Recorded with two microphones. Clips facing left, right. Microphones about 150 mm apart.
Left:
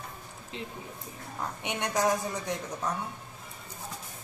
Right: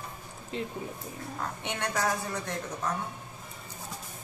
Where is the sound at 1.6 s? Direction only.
15° left (ahead or behind).